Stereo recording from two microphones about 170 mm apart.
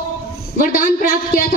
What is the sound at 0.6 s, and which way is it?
Speech, 55° left (ahead or behind).